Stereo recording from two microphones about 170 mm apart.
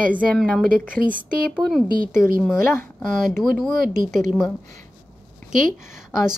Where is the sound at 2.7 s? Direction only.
10° left (ahead or behind).